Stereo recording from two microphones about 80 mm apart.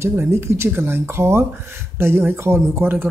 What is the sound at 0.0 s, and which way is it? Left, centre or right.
A woman's voice, right.